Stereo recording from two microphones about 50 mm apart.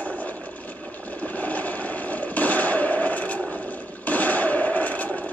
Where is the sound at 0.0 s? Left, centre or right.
Left.